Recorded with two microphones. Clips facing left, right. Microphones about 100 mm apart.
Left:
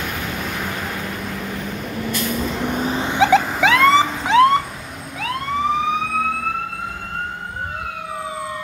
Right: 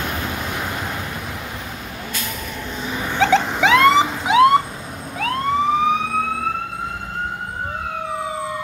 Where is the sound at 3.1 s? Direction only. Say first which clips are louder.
Left 1 dB; 10° left (ahead or behind); by 4.6 s 15° right (ahead or behind).